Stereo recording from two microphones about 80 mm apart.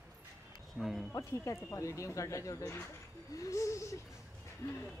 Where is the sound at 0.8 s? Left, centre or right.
Centre.